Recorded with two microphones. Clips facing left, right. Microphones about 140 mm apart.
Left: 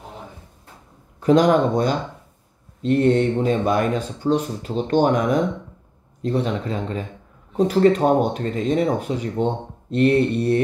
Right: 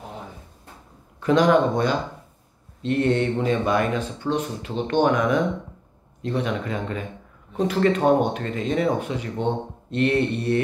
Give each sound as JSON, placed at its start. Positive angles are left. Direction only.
{"t": 1.2, "sound": "speech", "side_deg": 40}